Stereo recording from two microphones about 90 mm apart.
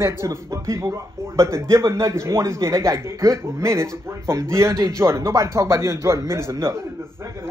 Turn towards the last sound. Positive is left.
turn(degrees=-30)  # may be behind; listen again after turning